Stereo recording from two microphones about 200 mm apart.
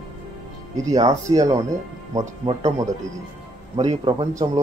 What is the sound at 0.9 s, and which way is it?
A man's voice, 15° right (ahead or behind).